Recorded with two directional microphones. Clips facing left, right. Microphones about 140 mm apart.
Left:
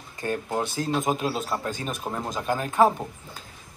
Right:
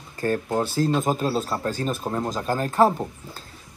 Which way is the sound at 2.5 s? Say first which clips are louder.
Right 1 dB; 40° right (ahead or behind).